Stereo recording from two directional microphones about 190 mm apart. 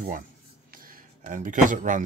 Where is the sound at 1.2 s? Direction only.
45° right (ahead or behind).